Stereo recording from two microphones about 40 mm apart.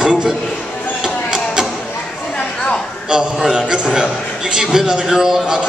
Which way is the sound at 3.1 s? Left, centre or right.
Centre.